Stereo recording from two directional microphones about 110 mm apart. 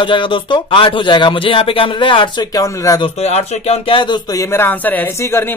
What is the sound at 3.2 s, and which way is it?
Speech, 70° left (ahead or behind).